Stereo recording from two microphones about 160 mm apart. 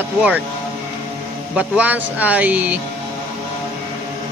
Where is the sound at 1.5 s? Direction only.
10° right (ahead or behind).